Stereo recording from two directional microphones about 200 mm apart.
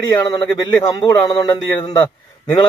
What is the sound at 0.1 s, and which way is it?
A man's voice, 15° left (ahead or behind).